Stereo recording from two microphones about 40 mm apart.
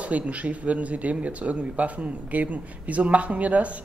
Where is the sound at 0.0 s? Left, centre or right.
Right.